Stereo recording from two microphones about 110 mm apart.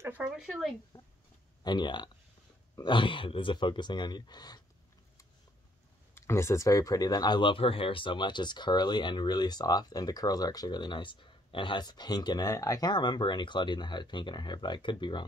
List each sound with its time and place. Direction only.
0.0 s a sound: 15° right (ahead or behind)
0.4 s speech: centre (ahead or behind)
1.6 s speech: 40° left (ahead or behind)
6.1 s speech: 25° left (ahead or behind); by 15.2 s 45° left (ahead or behind)